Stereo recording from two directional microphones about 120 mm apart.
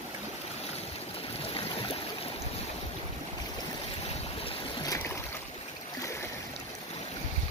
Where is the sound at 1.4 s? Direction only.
50° left (ahead or behind).